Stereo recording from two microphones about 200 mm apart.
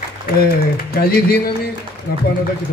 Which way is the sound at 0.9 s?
50° left (ahead or behind).